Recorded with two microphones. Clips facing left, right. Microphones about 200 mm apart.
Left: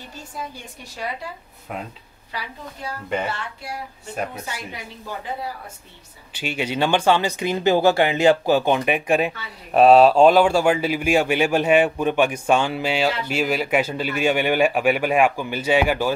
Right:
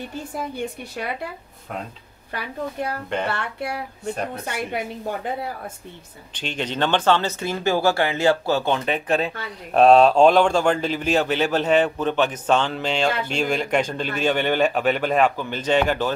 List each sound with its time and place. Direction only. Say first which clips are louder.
0.1 s a woman's voice: right 5 dB; 60° right (ahead or behind)
2.3 s a woman's voice: right 6 dB; 55° right (ahead or behind)
6.3 s speech: left 2 dB; 10° left (ahead or behind)